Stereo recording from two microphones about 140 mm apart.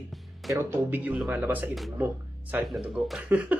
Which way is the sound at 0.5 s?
15° right (ahead or behind).